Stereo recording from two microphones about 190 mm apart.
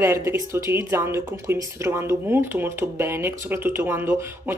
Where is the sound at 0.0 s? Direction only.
15° right (ahead or behind).